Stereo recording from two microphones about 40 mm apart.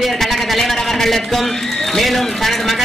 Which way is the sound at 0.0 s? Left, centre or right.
Centre.